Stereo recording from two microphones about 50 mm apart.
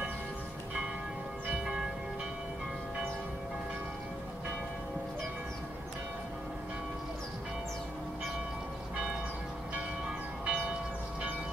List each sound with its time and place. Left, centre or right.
10.0 s church bell: centre